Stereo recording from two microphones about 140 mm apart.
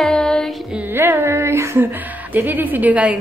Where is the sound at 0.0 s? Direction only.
5° left (ahead or behind).